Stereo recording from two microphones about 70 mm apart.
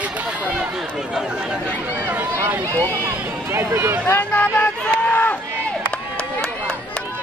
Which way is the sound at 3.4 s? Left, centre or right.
Right.